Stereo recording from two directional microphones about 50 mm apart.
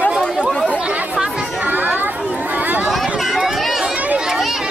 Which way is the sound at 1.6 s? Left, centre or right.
Right.